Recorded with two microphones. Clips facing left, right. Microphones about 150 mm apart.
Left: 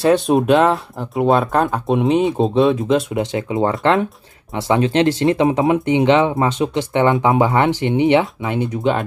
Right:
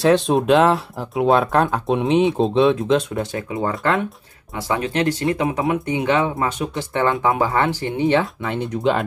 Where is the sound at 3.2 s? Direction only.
20° left (ahead or behind).